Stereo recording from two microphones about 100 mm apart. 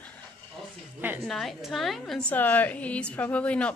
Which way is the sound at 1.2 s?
5° left (ahead or behind).